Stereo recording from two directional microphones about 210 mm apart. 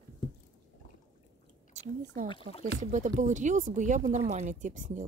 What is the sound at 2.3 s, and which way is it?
Speech, 25° left (ahead or behind).